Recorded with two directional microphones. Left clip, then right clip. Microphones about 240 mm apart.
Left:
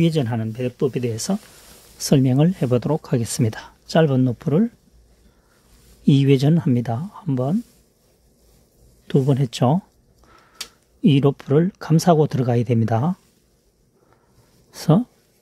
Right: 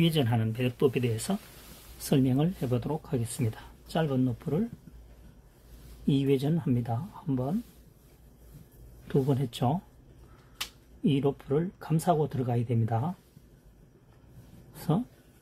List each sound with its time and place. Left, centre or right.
0.0 s speech: left
6.0 s speech: left
9.0 s speech: left
11.0 s speech: left
14.7 s speech: left